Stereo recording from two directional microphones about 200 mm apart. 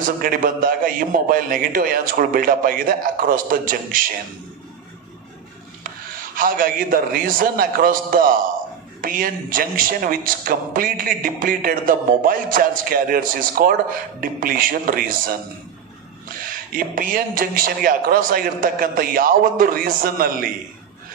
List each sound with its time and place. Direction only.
0.0 s a woman's voice: 45° right (ahead or behind)
6.3 s a woman's voice: 45° right (ahead or behind)